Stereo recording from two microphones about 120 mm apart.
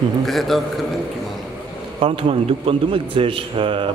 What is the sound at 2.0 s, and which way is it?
A man's voice, 55° right (ahead or behind).